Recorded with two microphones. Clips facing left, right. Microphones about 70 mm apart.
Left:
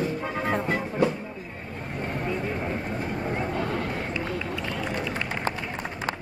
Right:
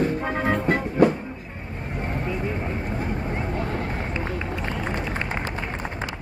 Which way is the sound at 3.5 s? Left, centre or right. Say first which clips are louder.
Even; right.